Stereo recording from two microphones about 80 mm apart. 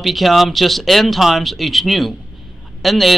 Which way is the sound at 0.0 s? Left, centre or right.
Centre.